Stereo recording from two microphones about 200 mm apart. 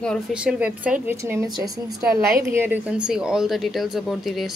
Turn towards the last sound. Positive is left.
turn(degrees=0)  # may be behind; listen again after turning